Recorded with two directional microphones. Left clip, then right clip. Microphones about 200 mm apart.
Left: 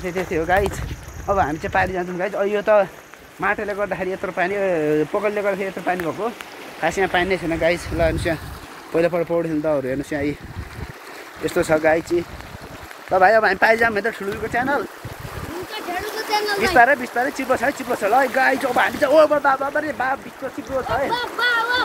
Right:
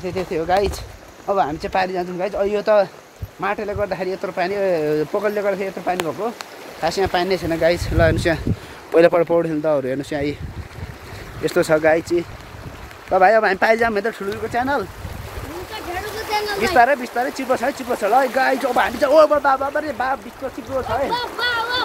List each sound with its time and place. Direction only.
0.0 s speech: centre (ahead or behind)
7.1 s speech: 15° right (ahead or behind)
8.0 s speech: 45° right (ahead or behind)
9.4 s speech: 10° right (ahead or behind)
11.4 s speech: 40° right (ahead or behind)
13.1 s speech: 20° right (ahead or behind)
14.4 s speech: 5° right (ahead or behind)
16.3 s a sound: 60° left (ahead or behind)
16.7 s speech: 5° right (ahead or behind)
21.1 s a sound: 25° left (ahead or behind)